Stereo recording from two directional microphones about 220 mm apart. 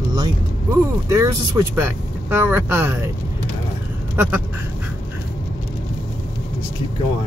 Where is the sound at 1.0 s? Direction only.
15° right (ahead or behind).